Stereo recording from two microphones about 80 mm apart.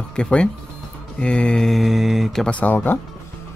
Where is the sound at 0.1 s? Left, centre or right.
Centre.